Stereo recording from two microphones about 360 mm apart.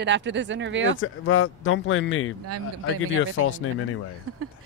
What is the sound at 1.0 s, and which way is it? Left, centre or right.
Speech, left.